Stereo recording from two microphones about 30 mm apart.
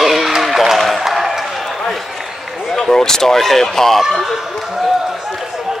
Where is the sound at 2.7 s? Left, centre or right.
Centre.